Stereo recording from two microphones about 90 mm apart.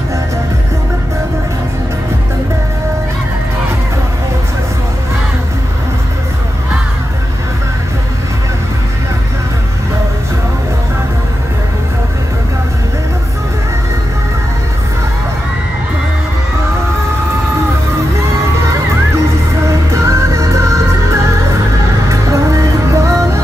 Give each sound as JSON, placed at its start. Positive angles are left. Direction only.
{"t": 19.7, "sound": "music", "side_deg": -35}